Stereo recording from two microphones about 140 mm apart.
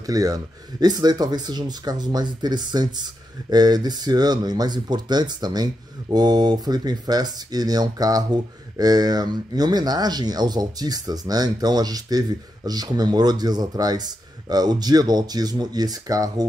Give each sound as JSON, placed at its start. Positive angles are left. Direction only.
{"t": 0.0, "sound": "speech", "side_deg": -25}